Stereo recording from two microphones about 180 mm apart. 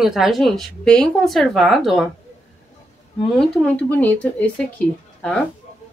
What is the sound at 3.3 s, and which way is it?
Speech, 5° left (ahead or behind).